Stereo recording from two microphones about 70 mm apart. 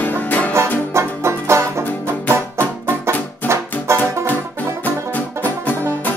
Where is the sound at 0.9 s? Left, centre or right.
Right.